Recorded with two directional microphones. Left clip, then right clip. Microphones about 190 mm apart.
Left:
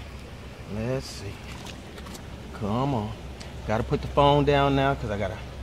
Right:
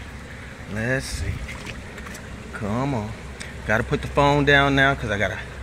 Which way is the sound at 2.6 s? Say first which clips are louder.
Right 1 dB; centre (ahead or behind).